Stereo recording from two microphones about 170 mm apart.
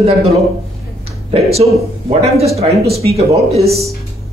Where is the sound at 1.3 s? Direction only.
35° right (ahead or behind).